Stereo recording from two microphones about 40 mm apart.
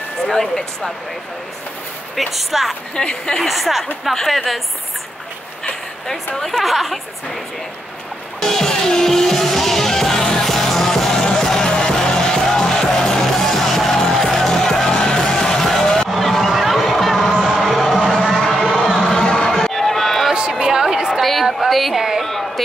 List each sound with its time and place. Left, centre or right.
0.3 s speech: centre
2.1 s a woman's voice: centre
3.0 s a woman's voice: left
3.4 s a woman's voice: centre
6.3 s a woman's voice: centre
8.4 s music: centre
16.1 s music: centre
18.6 s a sound: centre
18.9 s run: centre
20.3 s a sound: right
21.2 s a sound: centre
21.6 s music: centre
22.2 s a sound: centre